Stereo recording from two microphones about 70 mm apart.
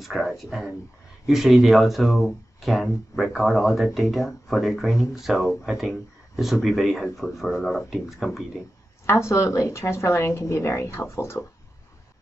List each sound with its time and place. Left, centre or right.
0.0 s speech: centre
9.0 s speech: left